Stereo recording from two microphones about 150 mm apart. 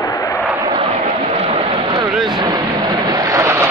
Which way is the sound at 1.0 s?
55° right (ahead or behind).